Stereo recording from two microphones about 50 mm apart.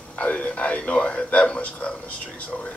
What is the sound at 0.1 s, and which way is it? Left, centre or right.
A man's voice, left.